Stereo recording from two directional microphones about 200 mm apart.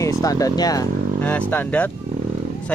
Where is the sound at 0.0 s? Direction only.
15° left (ahead or behind).